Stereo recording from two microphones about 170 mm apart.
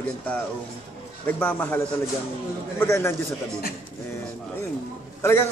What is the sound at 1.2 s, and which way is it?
Speech, 10° left (ahead or behind).